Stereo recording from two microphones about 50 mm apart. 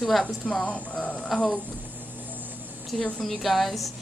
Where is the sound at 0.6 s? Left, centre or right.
Left.